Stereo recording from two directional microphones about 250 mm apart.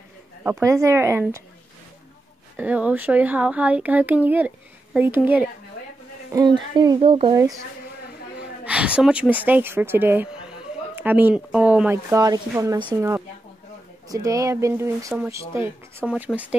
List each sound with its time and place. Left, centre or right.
0.4 s speech: centre
2.5 s speech: centre
8.6 s speech: centre